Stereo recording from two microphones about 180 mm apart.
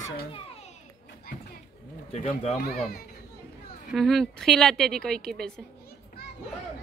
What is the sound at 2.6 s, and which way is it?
Speech, 60° left (ahead or behind).